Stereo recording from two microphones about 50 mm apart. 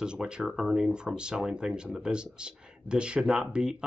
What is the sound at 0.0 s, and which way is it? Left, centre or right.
Speech, centre.